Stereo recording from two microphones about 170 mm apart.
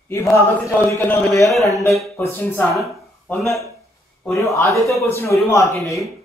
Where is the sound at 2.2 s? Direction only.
15° left (ahead or behind).